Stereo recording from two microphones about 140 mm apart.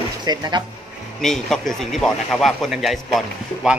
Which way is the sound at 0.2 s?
30° right (ahead or behind).